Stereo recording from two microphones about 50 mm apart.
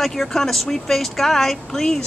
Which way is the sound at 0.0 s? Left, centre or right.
Centre.